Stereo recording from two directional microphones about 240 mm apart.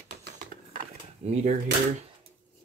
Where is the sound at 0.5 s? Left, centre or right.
Right.